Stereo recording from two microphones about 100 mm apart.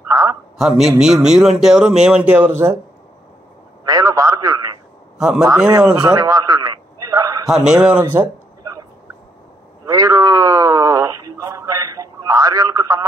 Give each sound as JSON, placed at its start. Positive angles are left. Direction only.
{"t": 0.1, "sound": "a man's voice", "side_deg": -35}
{"t": 0.6, "sound": "a man's voice", "side_deg": -5}
{"t": 3.8, "sound": "a sound", "side_deg": -40}
{"t": 5.2, "sound": "a man's voice", "side_deg": -5}
{"t": 5.9, "sound": "a man's voice", "side_deg": -45}
{"t": 7.4, "sound": "a man's voice", "side_deg": -5}
{"t": 9.8, "sound": "speech", "side_deg": -35}